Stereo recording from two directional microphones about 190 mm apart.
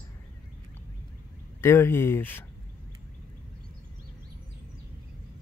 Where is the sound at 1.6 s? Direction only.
10° left (ahead or behind).